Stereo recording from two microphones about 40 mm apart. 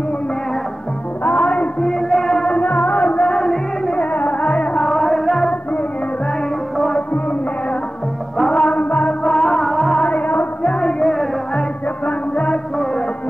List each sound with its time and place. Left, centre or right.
1.2 s music: left
1.8 s music: centre
2.5 s music: left
3.3 s music: centre
4.1 s music: left
4.7 s music: centre
8.5 s music: left
9.2 s music: centre
9.9 s music: left
12.1 s music: left